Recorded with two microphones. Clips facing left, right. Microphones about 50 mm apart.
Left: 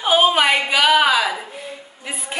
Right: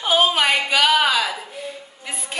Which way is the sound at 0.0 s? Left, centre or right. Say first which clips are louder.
Left 3 dB; centre.